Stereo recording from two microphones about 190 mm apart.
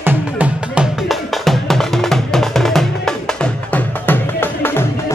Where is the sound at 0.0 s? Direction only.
5° right (ahead or behind).